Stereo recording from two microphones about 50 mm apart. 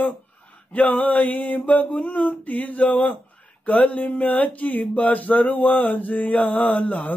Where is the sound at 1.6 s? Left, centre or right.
Left.